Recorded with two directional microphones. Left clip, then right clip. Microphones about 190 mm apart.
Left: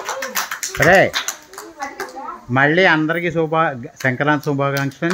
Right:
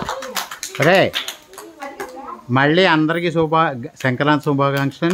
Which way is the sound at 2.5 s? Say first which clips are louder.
Left 1 dB; 20° right (ahead or behind).